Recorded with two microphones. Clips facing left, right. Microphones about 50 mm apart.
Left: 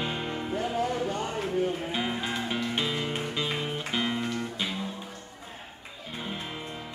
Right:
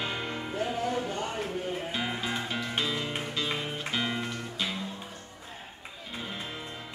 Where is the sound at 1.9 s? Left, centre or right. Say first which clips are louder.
Left 2 dB; centre.